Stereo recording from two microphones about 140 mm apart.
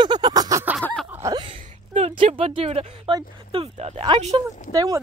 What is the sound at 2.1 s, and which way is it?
Speech, 40° right (ahead or behind).